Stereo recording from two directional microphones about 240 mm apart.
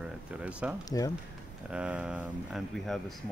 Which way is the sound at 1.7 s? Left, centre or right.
Centre.